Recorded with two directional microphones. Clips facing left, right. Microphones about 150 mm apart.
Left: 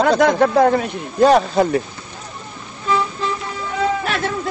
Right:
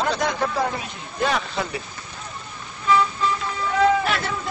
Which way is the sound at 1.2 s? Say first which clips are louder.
Left 11 dB; 40° left (ahead or behind).